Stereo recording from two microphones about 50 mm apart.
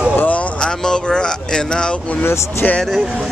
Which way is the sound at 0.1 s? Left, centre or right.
Left.